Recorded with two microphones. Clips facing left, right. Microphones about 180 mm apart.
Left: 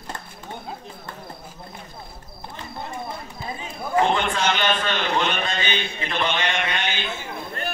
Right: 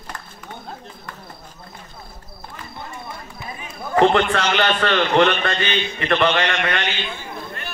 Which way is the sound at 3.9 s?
70° right (ahead or behind).